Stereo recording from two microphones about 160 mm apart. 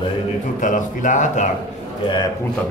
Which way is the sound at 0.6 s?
55° left (ahead or behind).